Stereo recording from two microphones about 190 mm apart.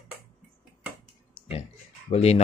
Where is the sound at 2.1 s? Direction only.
35° left (ahead or behind).